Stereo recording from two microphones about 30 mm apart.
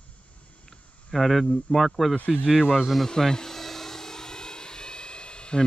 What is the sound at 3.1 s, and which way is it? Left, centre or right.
Vehicle, left.